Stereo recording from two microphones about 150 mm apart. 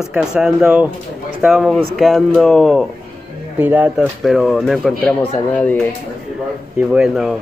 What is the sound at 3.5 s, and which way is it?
Speech, 10° right (ahead or behind).